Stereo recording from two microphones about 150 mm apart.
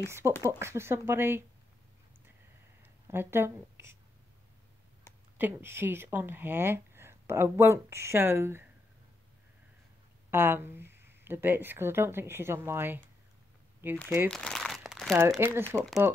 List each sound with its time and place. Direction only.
0.0 s speech: 15° right (ahead or behind)
2.8 s speech: 15° right (ahead or behind)
5.4 s speech: 15° right (ahead or behind)
10.3 s speech: 15° right (ahead or behind)
14.3 s crumpling: 5° left (ahead or behind)
15.1 s speech: 20° right (ahead or behind)